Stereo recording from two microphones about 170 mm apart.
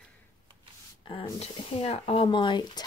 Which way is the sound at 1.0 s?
30° left (ahead or behind).